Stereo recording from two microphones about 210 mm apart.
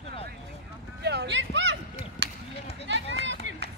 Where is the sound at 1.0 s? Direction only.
55° right (ahead or behind).